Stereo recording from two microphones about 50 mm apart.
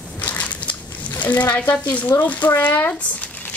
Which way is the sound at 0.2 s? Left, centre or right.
Left.